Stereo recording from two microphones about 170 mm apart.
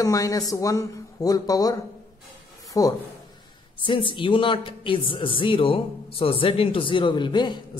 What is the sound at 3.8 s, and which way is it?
Speech, 30° left (ahead or behind).